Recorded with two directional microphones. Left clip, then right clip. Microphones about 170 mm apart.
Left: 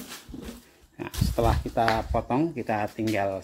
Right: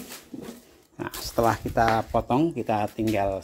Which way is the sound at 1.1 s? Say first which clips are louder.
Right 3 dB; 20° right (ahead or behind).